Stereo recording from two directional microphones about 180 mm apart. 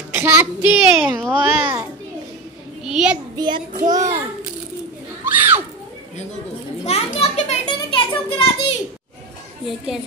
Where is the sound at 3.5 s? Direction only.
50° right (ahead or behind).